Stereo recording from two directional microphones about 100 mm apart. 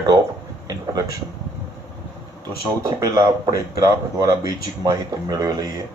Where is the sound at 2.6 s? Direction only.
35° right (ahead or behind).